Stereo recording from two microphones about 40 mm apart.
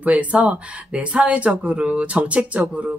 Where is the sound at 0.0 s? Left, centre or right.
Right.